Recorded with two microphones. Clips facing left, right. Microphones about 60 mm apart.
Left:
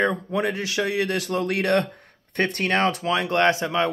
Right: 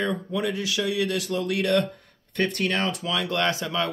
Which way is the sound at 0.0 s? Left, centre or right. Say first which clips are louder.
Left 4 dB; left.